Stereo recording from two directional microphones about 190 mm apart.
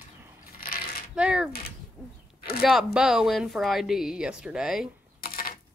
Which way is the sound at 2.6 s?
Centre (ahead or behind).